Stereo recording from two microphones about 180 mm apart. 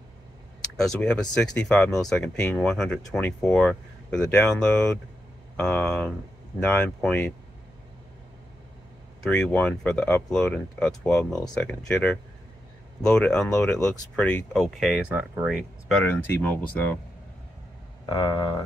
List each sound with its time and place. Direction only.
0.7 s speech: 5° left (ahead or behind)
9.2 s speech: 5° left (ahead or behind)
13.5 s speech: 15° left (ahead or behind)
13.8 s speech: 5° left (ahead or behind)
16.0 s speech: 10° left (ahead or behind)
18.0 s speech: 25° left (ahead or behind)